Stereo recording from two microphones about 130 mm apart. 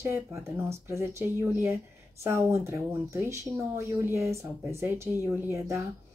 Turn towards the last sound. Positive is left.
turn(degrees=-15)  # may be behind; listen again after turning